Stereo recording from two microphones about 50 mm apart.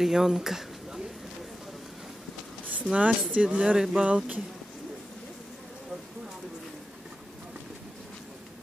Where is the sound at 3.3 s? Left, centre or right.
Right.